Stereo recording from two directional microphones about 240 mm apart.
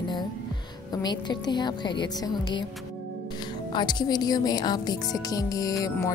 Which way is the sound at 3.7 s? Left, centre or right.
Centre.